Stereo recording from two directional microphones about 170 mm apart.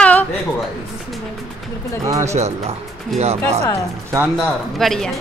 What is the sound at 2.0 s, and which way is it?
Speech, 20° right (ahead or behind).